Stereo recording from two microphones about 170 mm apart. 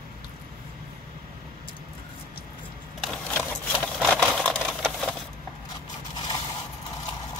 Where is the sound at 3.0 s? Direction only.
5° left (ahead or behind).